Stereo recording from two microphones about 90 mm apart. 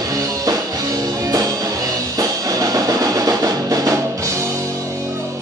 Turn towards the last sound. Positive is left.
turn(degrees=-40)  # may be behind; listen again after turning